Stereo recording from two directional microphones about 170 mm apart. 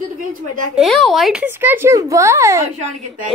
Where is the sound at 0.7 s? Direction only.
Centre (ahead or behind); by 2.6 s 15° right (ahead or behind).